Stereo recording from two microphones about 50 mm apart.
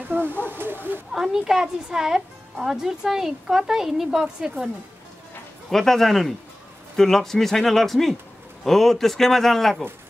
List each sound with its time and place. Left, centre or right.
0.1 s a sound: right
0.5 s speech: right
1.1 s speech: centre
5.7 s a man's voice: centre